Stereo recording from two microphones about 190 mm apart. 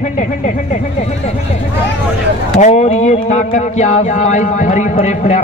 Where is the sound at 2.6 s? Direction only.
35° left (ahead or behind).